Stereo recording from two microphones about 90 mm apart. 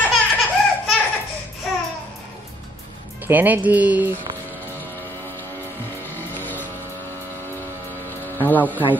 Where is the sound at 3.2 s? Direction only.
20° right (ahead or behind).